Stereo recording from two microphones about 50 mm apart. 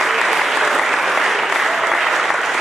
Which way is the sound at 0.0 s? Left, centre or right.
Centre.